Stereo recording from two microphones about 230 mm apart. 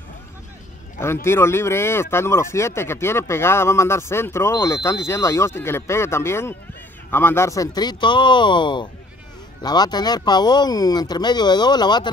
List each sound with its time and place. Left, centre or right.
0.9 s speech: centre